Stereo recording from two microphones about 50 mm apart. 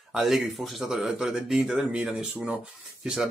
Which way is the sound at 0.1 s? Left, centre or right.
Centre.